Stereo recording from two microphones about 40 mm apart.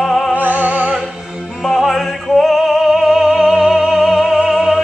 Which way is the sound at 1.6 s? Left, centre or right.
Centre.